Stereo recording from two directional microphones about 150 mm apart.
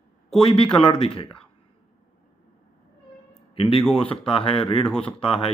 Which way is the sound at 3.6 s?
35° left (ahead or behind).